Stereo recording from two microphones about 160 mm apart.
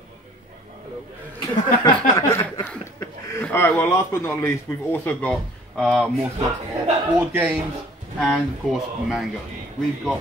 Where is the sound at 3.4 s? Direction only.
10° left (ahead or behind).